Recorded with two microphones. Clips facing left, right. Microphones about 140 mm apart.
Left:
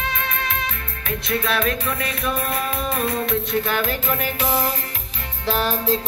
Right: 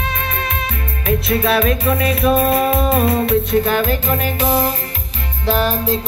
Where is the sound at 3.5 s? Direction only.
45° right (ahead or behind).